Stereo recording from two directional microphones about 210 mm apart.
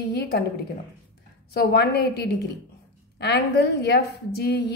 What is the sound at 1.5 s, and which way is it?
A woman's voice, 50° left (ahead or behind).